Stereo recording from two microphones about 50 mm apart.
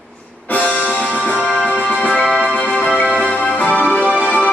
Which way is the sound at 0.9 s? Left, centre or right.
Left.